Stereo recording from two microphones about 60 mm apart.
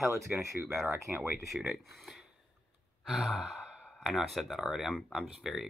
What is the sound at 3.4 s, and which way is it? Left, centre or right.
Sigh, centre.